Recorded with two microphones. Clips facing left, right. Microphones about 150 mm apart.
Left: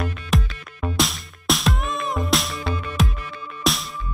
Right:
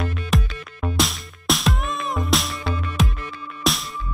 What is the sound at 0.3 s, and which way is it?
Music, centre (ahead or behind).